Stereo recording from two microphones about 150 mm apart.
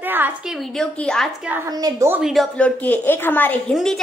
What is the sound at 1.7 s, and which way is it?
Speech, 25° right (ahead or behind).